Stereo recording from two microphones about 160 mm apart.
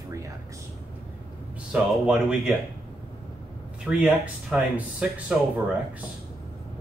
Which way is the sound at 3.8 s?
5° right (ahead or behind).